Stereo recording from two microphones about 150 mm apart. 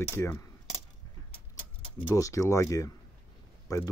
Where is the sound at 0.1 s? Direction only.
20° left (ahead or behind).